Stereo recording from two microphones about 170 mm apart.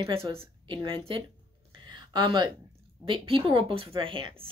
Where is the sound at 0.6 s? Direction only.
30° right (ahead or behind).